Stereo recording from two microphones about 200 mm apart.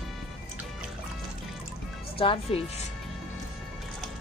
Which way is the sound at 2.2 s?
25° left (ahead or behind).